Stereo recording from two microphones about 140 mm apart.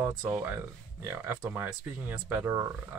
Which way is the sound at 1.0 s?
20° right (ahead or behind).